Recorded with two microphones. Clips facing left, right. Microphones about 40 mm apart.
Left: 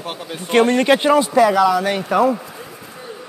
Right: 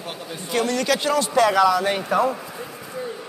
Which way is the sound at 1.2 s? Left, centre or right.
Centre.